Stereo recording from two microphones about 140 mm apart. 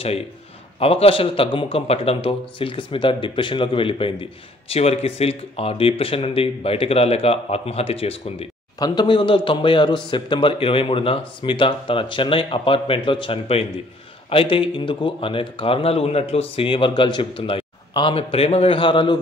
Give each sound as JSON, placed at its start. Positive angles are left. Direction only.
{"t": 0.7, "sound": "a man's voice", "side_deg": 45}
{"t": 8.7, "sound": "a man's voice", "side_deg": 30}